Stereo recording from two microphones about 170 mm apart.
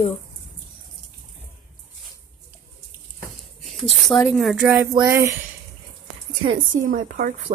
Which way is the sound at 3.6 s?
Centre (ahead or behind).